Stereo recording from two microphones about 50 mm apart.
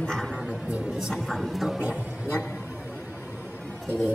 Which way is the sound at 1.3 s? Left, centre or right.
Centre.